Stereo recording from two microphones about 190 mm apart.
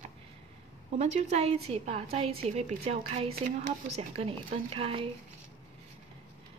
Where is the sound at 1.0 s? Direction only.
35° right (ahead or behind).